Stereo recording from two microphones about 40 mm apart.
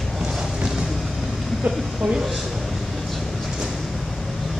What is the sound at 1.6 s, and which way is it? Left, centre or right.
Speech, right.